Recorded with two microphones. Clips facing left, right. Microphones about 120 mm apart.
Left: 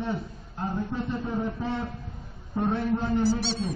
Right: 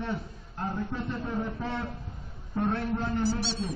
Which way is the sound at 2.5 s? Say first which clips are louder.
Left 3 dB; 15° left (ahead or behind).